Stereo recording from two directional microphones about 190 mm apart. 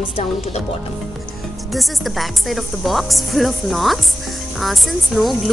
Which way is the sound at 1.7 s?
Centre (ahead or behind).